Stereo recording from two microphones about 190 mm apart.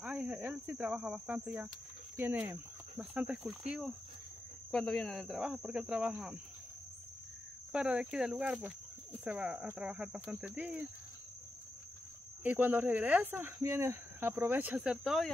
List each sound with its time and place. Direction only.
0.0 s speech: 5° right (ahead or behind)
7.7 s speech: 5° right (ahead or behind)
12.4 s speech: 10° right (ahead or behind)